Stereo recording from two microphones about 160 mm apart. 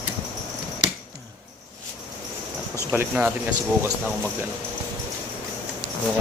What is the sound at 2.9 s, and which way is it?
Speech, 10° right (ahead or behind).